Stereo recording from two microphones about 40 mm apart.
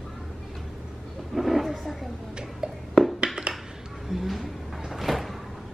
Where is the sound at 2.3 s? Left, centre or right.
Centre.